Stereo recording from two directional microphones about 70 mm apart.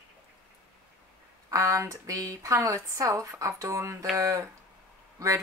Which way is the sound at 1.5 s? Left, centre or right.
Right.